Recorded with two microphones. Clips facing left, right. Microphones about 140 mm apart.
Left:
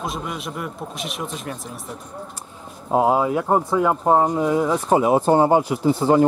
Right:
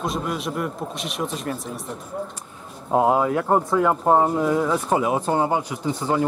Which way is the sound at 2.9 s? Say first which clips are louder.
Left 1 dB; 5° left (ahead or behind).